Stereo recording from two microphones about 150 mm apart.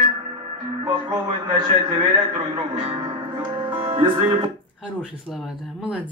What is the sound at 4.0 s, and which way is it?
Speech, 30° right (ahead or behind).